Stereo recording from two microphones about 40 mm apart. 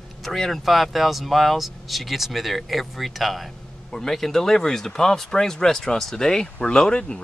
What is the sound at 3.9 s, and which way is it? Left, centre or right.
Speech, centre.